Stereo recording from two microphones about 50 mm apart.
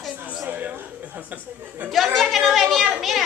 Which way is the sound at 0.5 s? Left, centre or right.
Right.